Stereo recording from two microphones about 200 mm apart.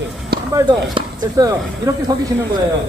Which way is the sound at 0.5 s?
20° right (ahead or behind).